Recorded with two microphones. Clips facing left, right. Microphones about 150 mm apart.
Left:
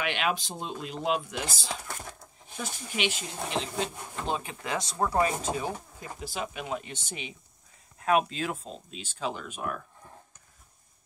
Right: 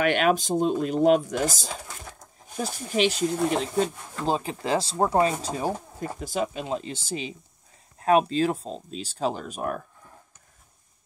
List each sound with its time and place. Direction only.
0.0 s speech: 45° right (ahead or behind); by 5.5 s 30° right (ahead or behind)
5.6 s speech: 45° right (ahead or behind)
6.5 s speech: 30° right (ahead or behind)